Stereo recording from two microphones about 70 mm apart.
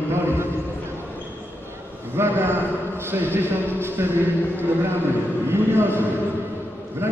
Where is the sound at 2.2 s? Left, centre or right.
Right.